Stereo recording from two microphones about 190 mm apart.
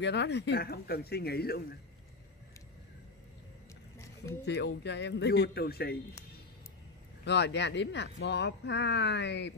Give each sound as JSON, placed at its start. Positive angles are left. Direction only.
{"t": 0.0, "sound": "speech", "side_deg": 65}
{"t": 4.5, "sound": "speech", "side_deg": 65}
{"t": 7.2, "sound": "speech", "side_deg": 65}